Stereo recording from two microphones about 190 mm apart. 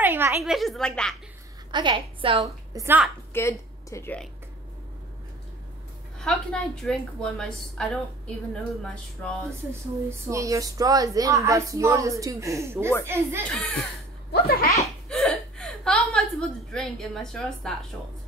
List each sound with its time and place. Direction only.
0.0 s a sound: 10° right (ahead or behind)
0.4 s a woman's voice: centre (ahead or behind)
1.7 s a woman's voice: 25° right (ahead or behind)
2.7 s speech: 10° right (ahead or behind)
3.3 s speech: 15° left (ahead or behind)
6.1 s a woman's voice: 5° left (ahead or behind)
9.7 s speech: 15° right (ahead or behind)
14.3 s a child's voice: 55° left (ahead or behind)
15.0 s a woman's voice: 5° left (ahead or behind)